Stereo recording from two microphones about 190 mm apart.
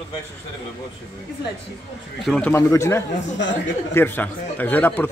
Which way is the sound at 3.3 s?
70° left (ahead or behind).